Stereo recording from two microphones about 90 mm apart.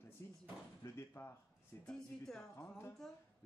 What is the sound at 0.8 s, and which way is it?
Speech, 30° left (ahead or behind).